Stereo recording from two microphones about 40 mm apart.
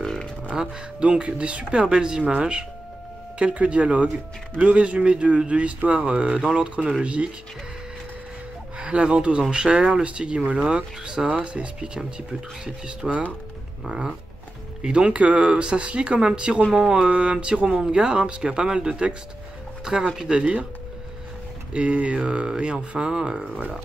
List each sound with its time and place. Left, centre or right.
0.5 s speech: centre
1.0 s a man's voice: right
8.7 s speech: right
21.7 s speech: right